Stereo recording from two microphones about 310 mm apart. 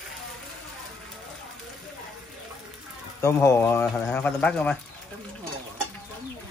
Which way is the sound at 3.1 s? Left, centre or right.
Centre.